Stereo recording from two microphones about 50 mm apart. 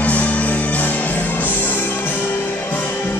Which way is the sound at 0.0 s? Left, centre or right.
Left.